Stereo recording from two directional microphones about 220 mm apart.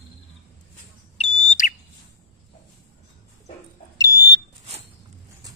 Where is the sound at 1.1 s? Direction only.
30° left (ahead or behind).